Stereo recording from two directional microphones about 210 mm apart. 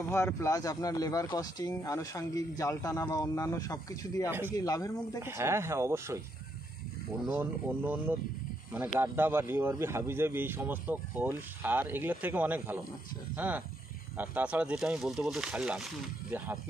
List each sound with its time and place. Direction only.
0.1 s speech: 15° left (ahead or behind)
4.3 s speech: 10° right (ahead or behind)
4.6 s speech: 15° left (ahead or behind)
5.2 s speech: 10° right (ahead or behind)
7.2 s speech: 10° right (ahead or behind)